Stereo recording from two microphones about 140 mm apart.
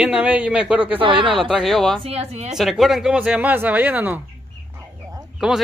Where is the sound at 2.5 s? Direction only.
Centre (ahead or behind).